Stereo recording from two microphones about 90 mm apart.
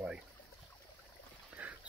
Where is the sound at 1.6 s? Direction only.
15° right (ahead or behind).